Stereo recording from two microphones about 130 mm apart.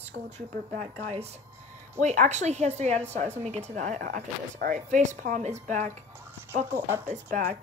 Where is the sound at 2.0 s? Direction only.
65° right (ahead or behind).